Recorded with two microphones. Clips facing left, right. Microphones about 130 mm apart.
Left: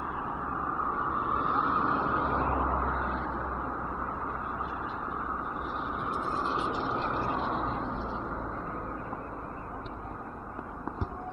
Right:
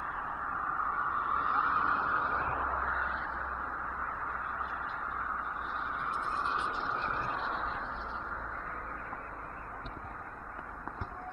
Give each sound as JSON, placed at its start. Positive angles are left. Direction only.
{"t": 0.7, "sound": "vehicle", "side_deg": 5}
{"t": 2.6, "sound": "vehicle", "side_deg": 50}
{"t": 6.1, "sound": "vehicle", "side_deg": 5}
{"t": 7.4, "sound": "a sound", "side_deg": 45}